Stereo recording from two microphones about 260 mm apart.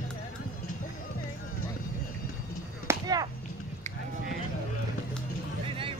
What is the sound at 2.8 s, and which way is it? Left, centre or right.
Chop, centre.